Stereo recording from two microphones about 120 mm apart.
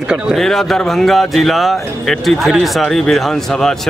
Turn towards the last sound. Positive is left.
turn(degrees=5)  # may be behind; listen again after turning